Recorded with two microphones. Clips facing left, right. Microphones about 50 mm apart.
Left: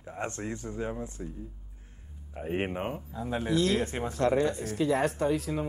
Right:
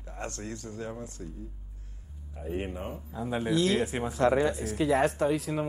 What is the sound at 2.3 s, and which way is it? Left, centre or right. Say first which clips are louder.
Speech: left 3 dB; left.